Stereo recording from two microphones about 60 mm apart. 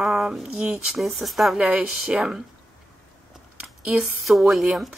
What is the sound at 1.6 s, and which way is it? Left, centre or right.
Speech, centre.